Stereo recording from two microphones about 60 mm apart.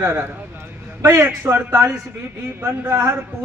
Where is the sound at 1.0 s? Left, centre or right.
Right.